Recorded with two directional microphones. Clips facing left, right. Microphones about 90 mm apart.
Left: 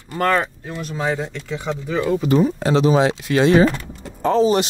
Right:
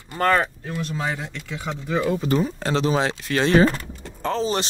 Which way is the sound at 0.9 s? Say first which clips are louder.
Left 9 dB; 20° left (ahead or behind).